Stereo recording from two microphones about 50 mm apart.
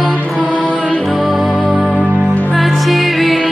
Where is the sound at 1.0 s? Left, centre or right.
Centre.